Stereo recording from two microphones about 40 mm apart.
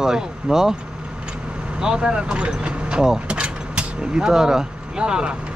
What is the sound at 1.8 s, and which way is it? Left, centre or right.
Speech, right.